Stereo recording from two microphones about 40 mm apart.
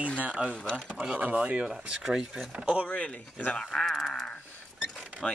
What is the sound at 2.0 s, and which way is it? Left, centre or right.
Speech, centre.